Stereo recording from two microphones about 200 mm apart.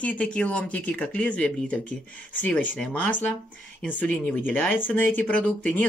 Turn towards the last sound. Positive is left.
turn(degrees=5)  # may be behind; listen again after turning